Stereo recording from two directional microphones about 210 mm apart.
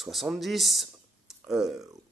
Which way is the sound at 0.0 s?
Centre (ahead or behind).